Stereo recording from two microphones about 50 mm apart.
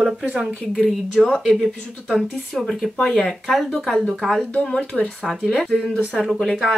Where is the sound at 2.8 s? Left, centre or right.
Centre.